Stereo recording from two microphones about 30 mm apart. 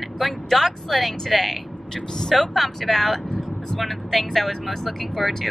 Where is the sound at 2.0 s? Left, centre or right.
Centre.